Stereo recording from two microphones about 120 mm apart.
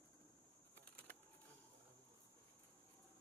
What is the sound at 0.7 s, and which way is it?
Bird flight, 15° left (ahead or behind).